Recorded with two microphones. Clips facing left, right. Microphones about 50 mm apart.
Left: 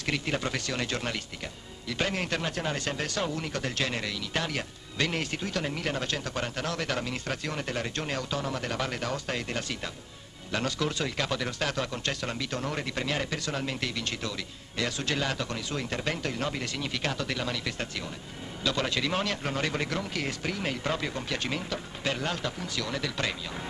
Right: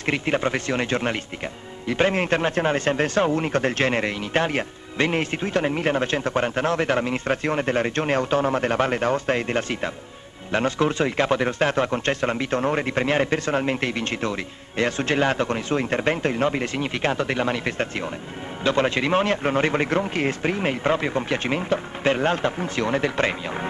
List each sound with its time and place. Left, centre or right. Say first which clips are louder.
0.0 s speech: right 8 dB; right